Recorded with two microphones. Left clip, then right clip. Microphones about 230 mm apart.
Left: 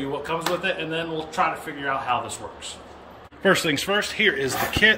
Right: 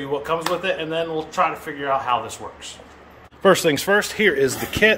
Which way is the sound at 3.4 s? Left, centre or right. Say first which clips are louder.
Right 4 dB; centre.